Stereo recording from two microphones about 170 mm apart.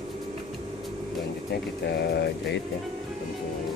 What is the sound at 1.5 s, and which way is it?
Speech, 75° left (ahead or behind).